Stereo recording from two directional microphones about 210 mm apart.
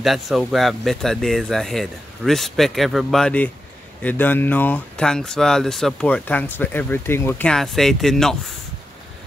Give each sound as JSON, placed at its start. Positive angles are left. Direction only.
{"t": 0.0, "sound": "speech", "side_deg": 0}